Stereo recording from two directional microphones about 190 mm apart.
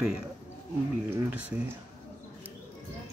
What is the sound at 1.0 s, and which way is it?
Speech, 10° right (ahead or behind).